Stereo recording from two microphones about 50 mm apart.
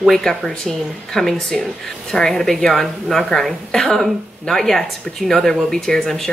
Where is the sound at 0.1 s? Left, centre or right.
Centre.